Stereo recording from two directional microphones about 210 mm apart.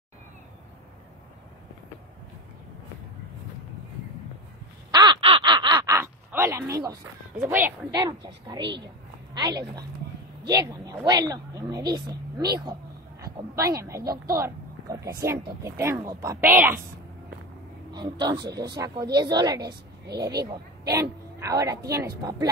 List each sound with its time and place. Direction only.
4.9 s crow: 20° right (ahead or behind)
7.3 s a woman's voice: 10° right (ahead or behind)
8.5 s a woman's voice: 55° right (ahead or behind)
8.8 s a woman's voice: 20° right (ahead or behind)
14.3 s a sound: 15° right (ahead or behind)
15.2 s a woman's voice: 15° right (ahead or behind)
17.9 s speech: 20° right (ahead or behind)
20.9 s a woman's voice: 15° right (ahead or behind)